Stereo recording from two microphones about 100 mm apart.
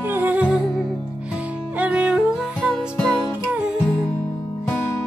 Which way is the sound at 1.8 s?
10° right (ahead or behind).